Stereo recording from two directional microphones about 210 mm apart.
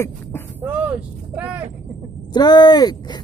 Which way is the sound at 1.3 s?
5° right (ahead or behind).